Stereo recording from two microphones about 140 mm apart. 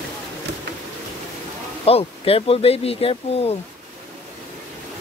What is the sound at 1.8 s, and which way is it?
Speech, 45° left (ahead or behind).